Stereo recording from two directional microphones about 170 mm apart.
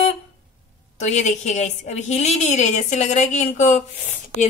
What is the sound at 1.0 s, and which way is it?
A woman's voice, 45° left (ahead or behind).